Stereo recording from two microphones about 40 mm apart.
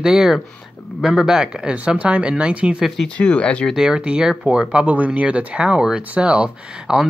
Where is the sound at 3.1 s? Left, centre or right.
Left.